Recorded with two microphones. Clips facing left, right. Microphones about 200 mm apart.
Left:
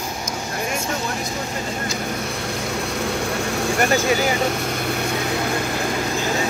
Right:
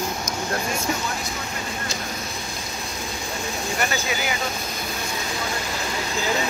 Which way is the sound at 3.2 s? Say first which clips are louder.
Left 7 dB; 90° left.